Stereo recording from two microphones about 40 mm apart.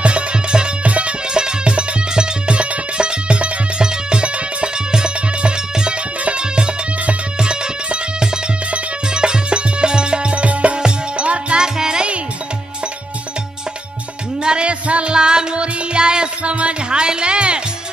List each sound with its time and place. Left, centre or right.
0.0 s music: right
1.3 s music: right
11.6 s music: centre
14.4 s music: right
16.5 s speech: right